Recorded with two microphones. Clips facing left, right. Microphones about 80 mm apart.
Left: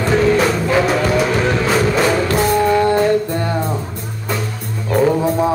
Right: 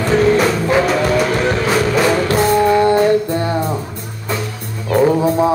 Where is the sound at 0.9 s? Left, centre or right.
Centre.